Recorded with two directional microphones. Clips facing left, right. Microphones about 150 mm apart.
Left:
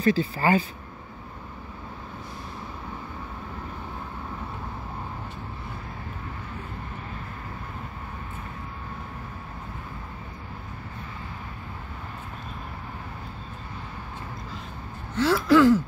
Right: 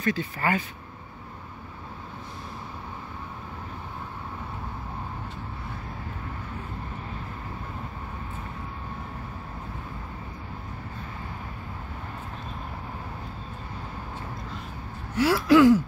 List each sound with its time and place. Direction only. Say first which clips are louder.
0.0 s speech: left 4 dB; 30° left (ahead or behind)
15.1 s gasp: right 1 dB; 10° right (ahead or behind)